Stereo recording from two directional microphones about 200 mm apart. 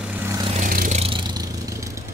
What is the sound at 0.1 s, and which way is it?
Vehicle, 15° right (ahead or behind).